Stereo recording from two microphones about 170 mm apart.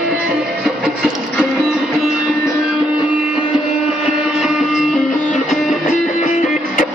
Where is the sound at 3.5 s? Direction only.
5° right (ahead or behind).